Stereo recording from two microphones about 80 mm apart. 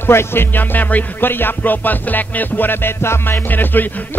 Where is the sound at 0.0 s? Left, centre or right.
Left.